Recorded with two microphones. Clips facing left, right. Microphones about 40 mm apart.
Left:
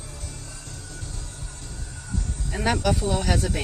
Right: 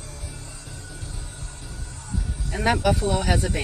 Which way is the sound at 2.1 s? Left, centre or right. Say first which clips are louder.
Right 1 dB; centre.